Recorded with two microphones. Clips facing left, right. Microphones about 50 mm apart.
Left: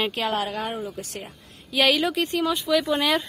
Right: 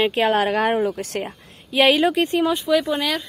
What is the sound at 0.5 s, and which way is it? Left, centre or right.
Speech, right.